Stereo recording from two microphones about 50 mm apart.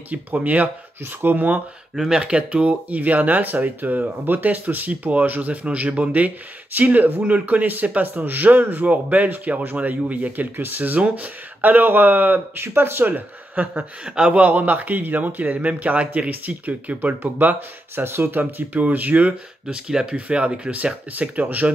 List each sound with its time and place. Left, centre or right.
0.1 s speech: right
2.1 s speech: right
12.6 s speech: right
14.0 s speech: centre
14.3 s speech: right
18.4 s speech: right
19.6 s speech: centre
20.2 s speech: right
20.7 s speech: right